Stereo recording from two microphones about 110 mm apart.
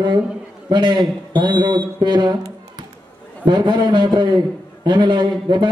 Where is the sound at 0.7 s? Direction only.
45° right (ahead or behind).